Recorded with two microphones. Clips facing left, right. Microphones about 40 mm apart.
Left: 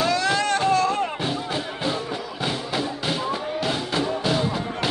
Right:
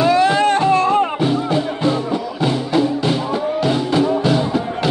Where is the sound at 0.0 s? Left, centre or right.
Right.